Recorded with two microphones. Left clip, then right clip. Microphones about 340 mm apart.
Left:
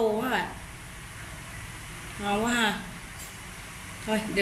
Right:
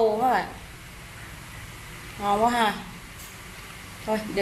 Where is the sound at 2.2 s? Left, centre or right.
Centre.